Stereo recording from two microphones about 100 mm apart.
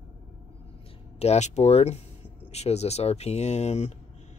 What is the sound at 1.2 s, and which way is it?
Speech, 90° left.